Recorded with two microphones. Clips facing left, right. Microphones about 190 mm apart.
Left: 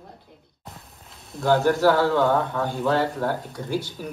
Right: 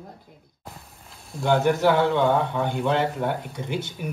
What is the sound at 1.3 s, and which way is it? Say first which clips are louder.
Speech: left 1 dB; centre (ahead or behind).